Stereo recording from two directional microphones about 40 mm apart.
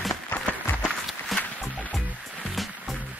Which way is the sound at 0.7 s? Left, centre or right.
Left.